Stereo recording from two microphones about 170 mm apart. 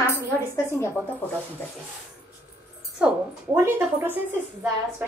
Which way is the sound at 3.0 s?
5° right (ahead or behind).